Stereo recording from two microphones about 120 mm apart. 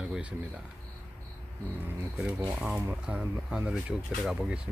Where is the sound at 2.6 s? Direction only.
15° right (ahead or behind).